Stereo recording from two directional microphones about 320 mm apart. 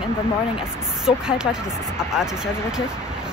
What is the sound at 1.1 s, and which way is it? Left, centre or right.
Speech, centre.